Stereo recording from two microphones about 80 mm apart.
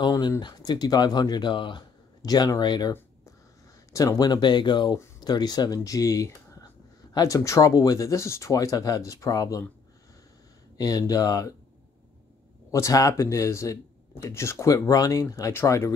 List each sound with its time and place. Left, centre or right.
0.5 s speech: left
2.2 s speech: left
3.9 s speech: left
5.2 s speech: left
5.9 s speech: left
10.8 s speech: left
12.7 s speech: left